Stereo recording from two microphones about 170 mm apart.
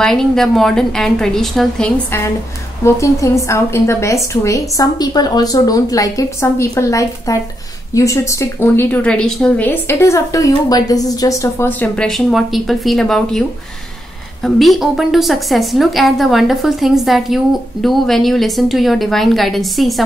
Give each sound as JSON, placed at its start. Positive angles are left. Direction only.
{"t": 0.0, "sound": "a woman's voice", "side_deg": 0}
{"t": 2.0, "sound": "a woman's voice", "side_deg": 15}